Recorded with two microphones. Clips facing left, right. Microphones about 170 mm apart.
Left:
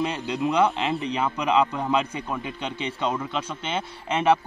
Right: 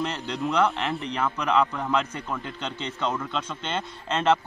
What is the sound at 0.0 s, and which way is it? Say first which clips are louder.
Speech: left 3 dB; 10° left (ahead or behind).